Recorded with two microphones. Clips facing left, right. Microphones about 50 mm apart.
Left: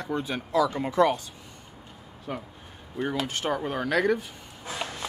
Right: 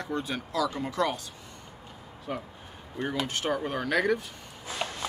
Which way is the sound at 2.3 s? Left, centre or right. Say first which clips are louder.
Even; centre.